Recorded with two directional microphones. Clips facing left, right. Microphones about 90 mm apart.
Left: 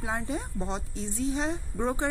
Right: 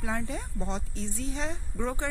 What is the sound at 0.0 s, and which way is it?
A woman's voice, 20° left (ahead or behind).